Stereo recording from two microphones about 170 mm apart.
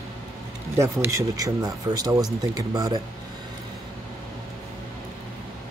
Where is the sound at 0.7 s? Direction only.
15° right (ahead or behind).